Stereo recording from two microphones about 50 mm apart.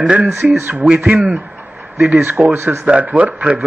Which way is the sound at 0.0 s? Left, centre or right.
Right.